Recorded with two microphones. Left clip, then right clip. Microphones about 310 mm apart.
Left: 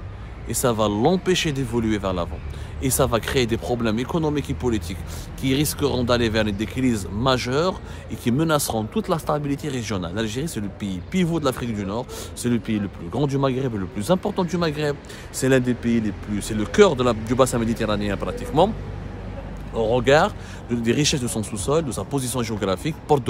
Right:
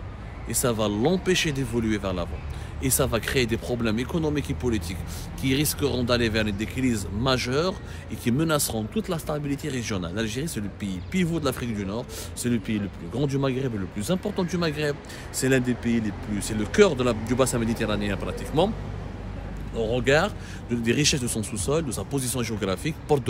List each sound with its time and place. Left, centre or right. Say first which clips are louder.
0.5 s speech: left 4 dB; centre
19.7 s speech: left 5 dB; centre